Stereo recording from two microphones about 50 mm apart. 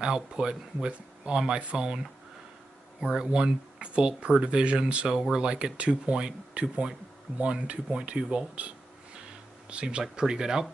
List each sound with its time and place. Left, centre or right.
0.0 s speech: centre